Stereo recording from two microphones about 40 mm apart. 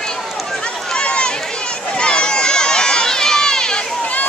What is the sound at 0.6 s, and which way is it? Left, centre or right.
Run, left.